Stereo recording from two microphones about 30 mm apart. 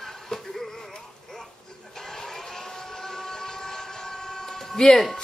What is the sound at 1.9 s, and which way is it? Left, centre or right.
Vehicle, centre.